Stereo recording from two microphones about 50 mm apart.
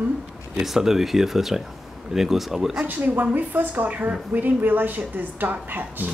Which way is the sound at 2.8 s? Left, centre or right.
Right.